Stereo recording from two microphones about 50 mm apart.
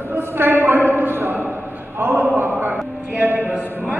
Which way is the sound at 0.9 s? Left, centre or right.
Right.